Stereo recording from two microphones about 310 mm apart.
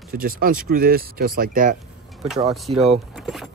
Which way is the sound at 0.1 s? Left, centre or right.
Right.